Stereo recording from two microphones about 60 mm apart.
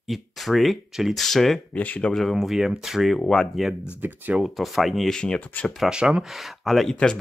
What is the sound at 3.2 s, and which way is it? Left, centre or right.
Speech, centre.